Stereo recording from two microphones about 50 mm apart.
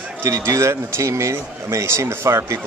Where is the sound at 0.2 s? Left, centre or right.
Right.